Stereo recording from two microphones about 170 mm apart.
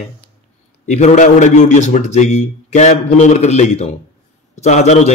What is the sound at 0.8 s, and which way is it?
A man's voice, 40° left (ahead or behind).